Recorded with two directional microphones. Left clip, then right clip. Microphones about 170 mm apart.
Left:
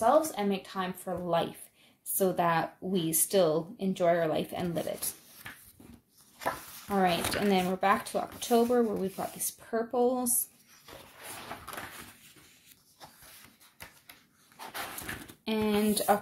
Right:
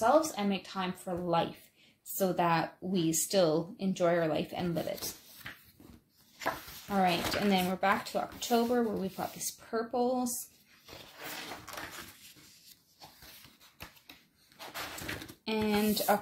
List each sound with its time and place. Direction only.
0.0 s a woman's voice: 15° left (ahead or behind)
6.9 s speech: 30° left (ahead or behind)
15.4 s speech: 20° left (ahead or behind)